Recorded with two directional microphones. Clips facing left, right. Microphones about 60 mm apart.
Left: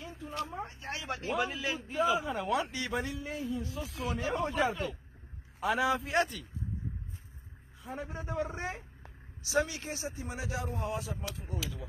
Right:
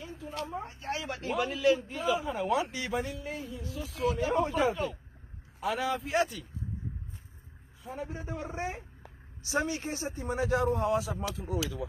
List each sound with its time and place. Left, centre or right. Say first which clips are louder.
0.8 s a man's voice: right 2 dB; centre
7.8 s a man's voice: right 1 dB; centre
8.5 s speech: right 3 dB; centre
9.5 s speech: even; right